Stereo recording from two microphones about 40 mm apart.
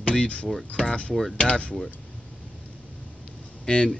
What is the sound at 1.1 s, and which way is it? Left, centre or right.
Speech, centre.